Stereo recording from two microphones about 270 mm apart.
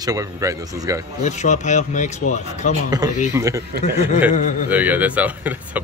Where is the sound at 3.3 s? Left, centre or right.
Centre.